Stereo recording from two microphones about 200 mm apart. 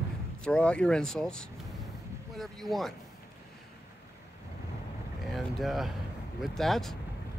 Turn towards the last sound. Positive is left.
turn(degrees=0)  # may be behind; listen again after turning